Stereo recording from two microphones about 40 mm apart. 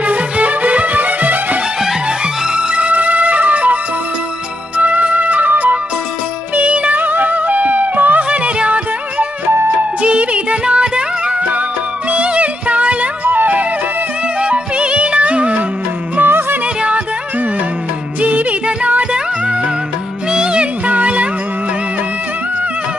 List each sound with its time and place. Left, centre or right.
0.1 s music: right
2.5 s music: right
4.7 s music: right
7.0 s music: right
8.2 s music: right
13.2 s music: right
14.4 s music: right
16.2 s music: right
20.8 s music: right